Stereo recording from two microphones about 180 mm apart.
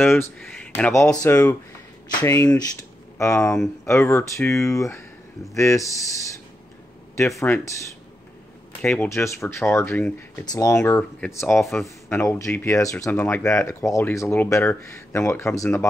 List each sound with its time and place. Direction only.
0.0 s speech: 10° left (ahead or behind)
7.4 s speech: 10° left (ahead or behind)
8.8 s speech: 10° left (ahead or behind)